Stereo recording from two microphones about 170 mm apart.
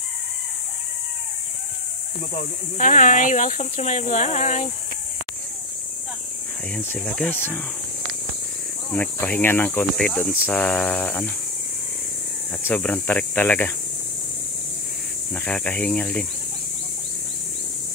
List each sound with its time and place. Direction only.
2.3 s speech: 50° left (ahead or behind)
6.7 s speech: 10° left (ahead or behind)
8.9 s speech: 10° left (ahead or behind)
12.6 s speech: 10° left (ahead or behind)
15.3 s speech: 10° left (ahead or behind)